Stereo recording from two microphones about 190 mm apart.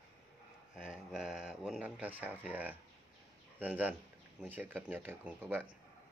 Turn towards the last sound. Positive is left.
turn(degrees=-10)  # may be behind; listen again after turning